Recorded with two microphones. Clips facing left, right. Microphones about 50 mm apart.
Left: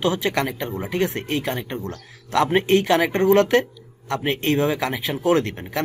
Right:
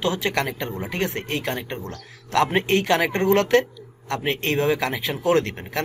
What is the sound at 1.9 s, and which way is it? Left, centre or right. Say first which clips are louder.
Speech: left 2 dB; centre.